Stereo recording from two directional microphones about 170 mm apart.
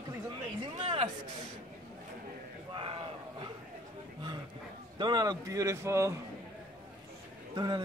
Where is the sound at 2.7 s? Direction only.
30° right (ahead or behind).